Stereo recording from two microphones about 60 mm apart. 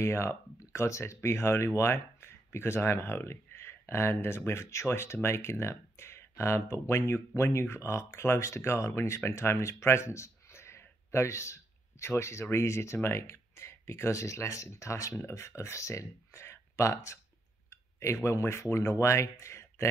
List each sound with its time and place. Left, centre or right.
0.0 s speech: left
17.6 s a sound: left
18.2 s speech: left